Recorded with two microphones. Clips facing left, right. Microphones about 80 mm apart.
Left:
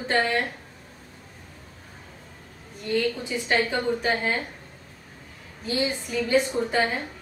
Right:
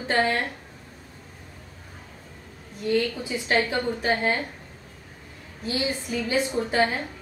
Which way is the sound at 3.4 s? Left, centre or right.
Centre.